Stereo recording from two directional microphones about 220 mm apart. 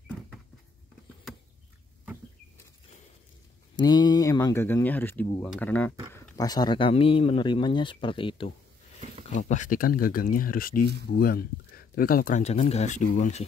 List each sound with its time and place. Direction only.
3.7 s speech: 20° left (ahead or behind)
6.3 s speech: 20° left (ahead or behind)
9.3 s speech: 35° left (ahead or behind)